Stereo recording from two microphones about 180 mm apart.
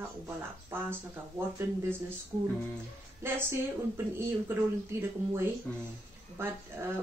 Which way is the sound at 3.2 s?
15° right (ahead or behind).